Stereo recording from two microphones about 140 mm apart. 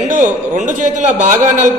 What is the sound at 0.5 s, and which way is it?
A man's voice, 60° right (ahead or behind).